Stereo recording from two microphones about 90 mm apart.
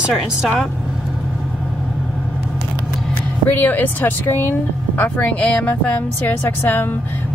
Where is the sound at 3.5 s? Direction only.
20° left (ahead or behind).